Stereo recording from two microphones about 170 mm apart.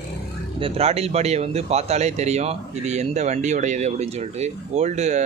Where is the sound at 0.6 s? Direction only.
35° right (ahead or behind).